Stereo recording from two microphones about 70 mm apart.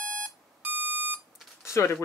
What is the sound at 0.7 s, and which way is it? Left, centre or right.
Beep, right.